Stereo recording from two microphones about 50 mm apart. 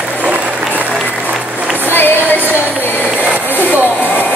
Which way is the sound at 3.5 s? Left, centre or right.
Left.